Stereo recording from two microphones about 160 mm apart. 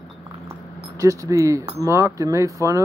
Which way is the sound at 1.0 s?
20° right (ahead or behind).